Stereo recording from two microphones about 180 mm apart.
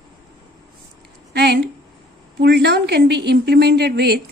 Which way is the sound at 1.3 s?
65° right (ahead or behind).